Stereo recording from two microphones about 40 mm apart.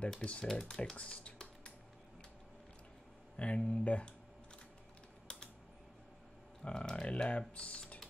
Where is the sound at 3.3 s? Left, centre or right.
Left.